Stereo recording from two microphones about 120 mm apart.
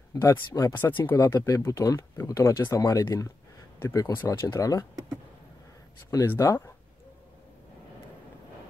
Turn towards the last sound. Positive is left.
turn(degrees=25)  # may be behind; listen again after turning